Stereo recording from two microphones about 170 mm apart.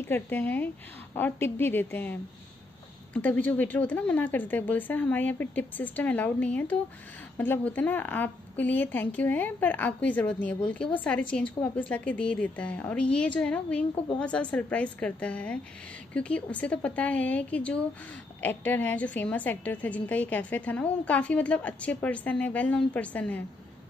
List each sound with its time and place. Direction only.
0.0 s a woman's voice: 10° left (ahead or behind)